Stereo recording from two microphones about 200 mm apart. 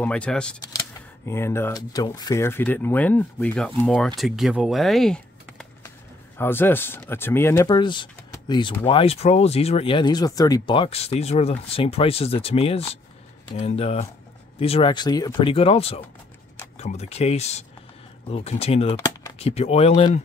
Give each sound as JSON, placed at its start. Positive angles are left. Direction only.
{"t": 0.0, "sound": "speech", "side_deg": 5}
{"t": 18.9, "sound": "a sound", "side_deg": 20}
{"t": 19.3, "sound": "speech", "side_deg": 30}